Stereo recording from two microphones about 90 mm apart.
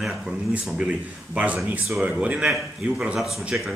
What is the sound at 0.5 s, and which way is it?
A man's voice, 15° right (ahead or behind).